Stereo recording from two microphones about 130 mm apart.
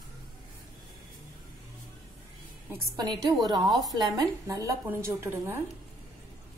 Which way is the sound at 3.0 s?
30° right (ahead or behind).